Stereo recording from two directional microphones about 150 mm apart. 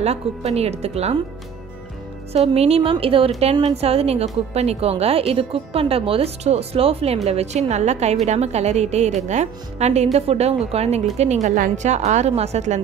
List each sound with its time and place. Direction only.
0.0 s a woman's voice: 45° right (ahead or behind)
2.3 s a woman's voice: 45° right (ahead or behind)
11.4 s a woman's voice: 60° right (ahead or behind)